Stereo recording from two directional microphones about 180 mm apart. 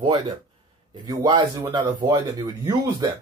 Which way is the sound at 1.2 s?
25° right (ahead or behind).